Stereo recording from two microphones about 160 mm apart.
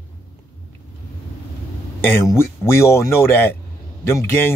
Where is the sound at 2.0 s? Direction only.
15° left (ahead or behind).